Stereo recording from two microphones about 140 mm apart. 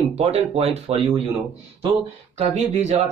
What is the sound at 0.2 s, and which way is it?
Speech, 50° right (ahead or behind).